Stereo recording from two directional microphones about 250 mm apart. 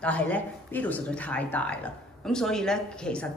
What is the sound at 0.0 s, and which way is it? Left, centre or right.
A woman's voice, centre.